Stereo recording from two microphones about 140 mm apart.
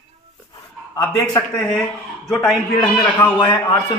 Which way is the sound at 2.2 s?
Centre (ahead or behind).